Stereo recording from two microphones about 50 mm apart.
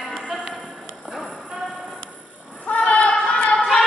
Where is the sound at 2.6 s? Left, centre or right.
Left.